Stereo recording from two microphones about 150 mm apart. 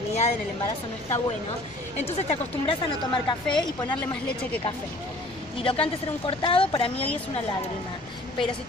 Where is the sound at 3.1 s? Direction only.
30° left (ahead or behind).